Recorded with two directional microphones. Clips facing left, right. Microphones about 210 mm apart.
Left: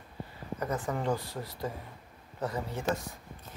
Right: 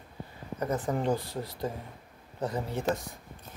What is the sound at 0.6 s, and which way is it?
Speech, 20° right (ahead or behind).